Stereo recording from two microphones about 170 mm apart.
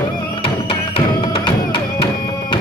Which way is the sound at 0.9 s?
30° left (ahead or behind).